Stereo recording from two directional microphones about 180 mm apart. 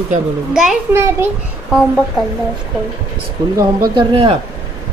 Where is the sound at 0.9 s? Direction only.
15° right (ahead or behind).